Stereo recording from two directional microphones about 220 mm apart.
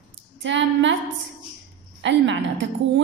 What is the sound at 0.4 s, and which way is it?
Speech, 55° right (ahead or behind).